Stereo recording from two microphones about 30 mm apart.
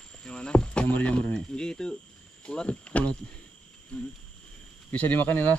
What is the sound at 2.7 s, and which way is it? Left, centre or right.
Speech, left.